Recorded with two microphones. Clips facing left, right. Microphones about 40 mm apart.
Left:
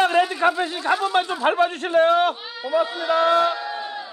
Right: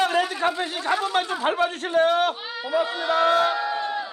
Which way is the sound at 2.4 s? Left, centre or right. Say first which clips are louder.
Left 2 dB; centre.